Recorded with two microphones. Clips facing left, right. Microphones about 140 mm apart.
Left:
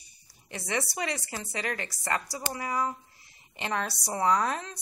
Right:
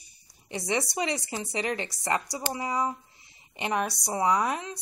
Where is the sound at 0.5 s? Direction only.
20° right (ahead or behind).